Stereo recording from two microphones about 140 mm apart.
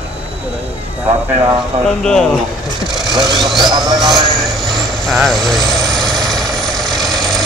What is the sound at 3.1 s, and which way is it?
Speech, 30° right (ahead or behind).